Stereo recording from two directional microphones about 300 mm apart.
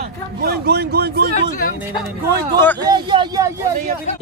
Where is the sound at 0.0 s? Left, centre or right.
Right.